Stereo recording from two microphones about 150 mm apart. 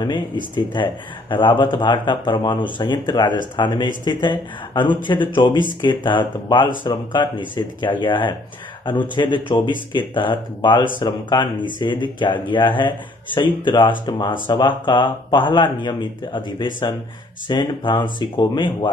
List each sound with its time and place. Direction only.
0.0 s speech: 35° left (ahead or behind)